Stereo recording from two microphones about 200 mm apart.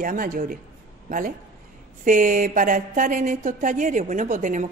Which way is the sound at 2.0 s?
40° right (ahead or behind).